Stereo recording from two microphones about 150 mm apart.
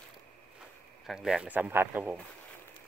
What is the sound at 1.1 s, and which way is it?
Speech, 5° right (ahead or behind).